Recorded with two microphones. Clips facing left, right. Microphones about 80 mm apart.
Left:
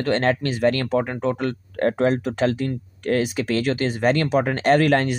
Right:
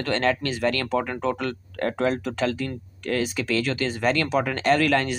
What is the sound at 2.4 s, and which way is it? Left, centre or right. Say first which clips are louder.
Speech: left 4 dB; left.